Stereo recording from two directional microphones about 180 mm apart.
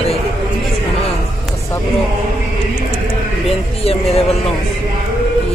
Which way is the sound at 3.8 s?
35° left (ahead or behind).